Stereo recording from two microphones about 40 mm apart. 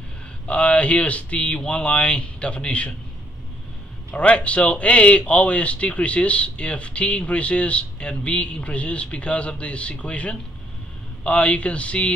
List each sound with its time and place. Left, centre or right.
0.5 s speech: left
4.1 s speech: left